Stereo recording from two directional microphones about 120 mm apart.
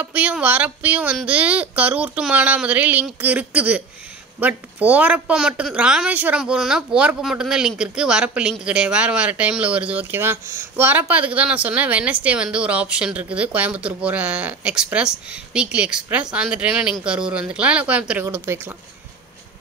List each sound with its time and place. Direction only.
0.0 s a woman's voice: 10° right (ahead or behind)
18.2 s speech: 20° right (ahead or behind)